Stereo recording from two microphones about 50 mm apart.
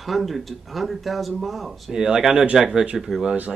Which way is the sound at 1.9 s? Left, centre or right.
Centre.